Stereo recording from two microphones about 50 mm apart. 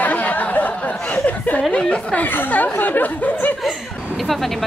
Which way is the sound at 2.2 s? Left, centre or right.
Left.